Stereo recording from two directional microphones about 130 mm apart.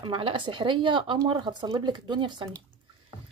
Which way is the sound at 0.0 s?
40° right (ahead or behind).